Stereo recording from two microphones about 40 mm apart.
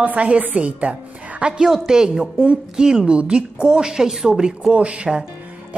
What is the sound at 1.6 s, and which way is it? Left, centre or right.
Speech, centre.